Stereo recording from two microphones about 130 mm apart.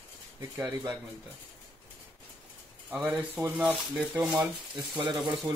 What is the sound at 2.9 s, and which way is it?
Speech, 5° right (ahead or behind).